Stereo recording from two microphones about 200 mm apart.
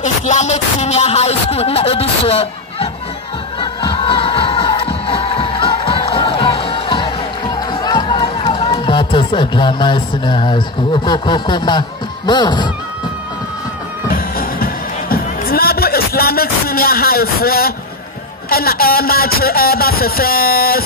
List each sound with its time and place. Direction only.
0.0 s a sound: 35° left (ahead or behind)
3.5 s music: 25° left (ahead or behind)
12.3 s speech: 20° left (ahead or behind)
14.1 s music: 45° left (ahead or behind)
18.5 s speech: 50° left (ahead or behind)